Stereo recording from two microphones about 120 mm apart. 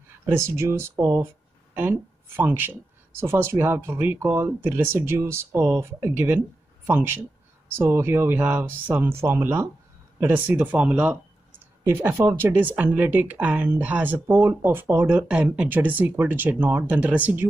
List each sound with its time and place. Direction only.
0.3 s speech: 20° right (ahead or behind)